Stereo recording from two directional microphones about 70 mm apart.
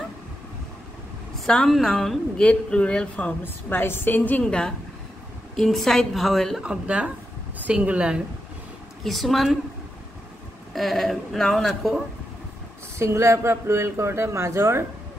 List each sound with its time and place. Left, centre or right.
1.4 s a woman's voice: centre
2.4 s a woman's voice: centre
3.4 s a woman's voice: left
4.5 s a woman's voice: centre
6.6 s a woman's voice: centre
9.0 s a woman's voice: centre
10.7 s a woman's voice: centre
13.0 s a man's voice: right